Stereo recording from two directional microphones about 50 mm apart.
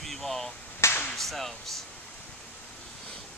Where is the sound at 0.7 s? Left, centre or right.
Left.